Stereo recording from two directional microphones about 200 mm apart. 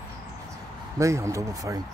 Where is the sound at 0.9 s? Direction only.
15° right (ahead or behind).